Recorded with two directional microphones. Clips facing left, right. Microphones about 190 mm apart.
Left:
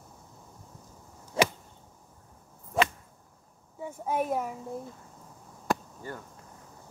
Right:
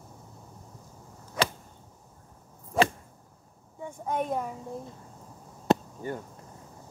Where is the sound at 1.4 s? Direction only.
30° left (ahead or behind).